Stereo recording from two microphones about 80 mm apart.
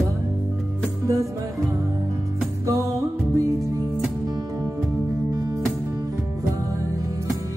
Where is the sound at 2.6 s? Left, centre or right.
Right.